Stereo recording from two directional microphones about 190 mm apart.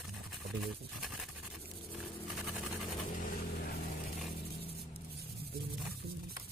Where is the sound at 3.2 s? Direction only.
55° left (ahead or behind).